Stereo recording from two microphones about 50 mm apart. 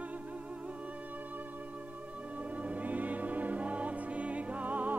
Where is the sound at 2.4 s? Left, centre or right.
Right.